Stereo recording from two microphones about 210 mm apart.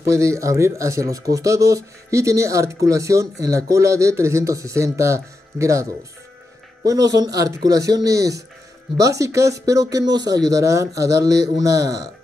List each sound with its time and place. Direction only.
0.1 s speech: 15° right (ahead or behind)